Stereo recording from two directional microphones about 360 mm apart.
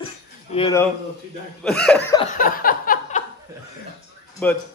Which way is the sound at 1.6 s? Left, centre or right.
Centre.